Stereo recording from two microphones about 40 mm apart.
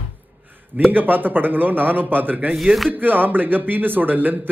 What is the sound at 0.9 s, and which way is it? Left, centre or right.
Speech, right.